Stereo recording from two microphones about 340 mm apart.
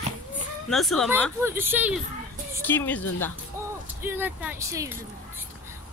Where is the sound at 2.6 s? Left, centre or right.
Centre.